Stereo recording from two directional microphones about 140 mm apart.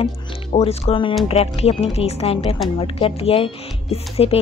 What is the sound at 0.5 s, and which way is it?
A woman's voice, 45° left (ahead or behind).